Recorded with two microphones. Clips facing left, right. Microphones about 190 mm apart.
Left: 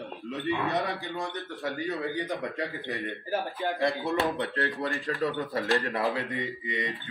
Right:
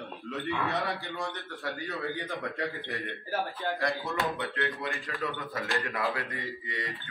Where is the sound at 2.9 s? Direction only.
15° left (ahead or behind).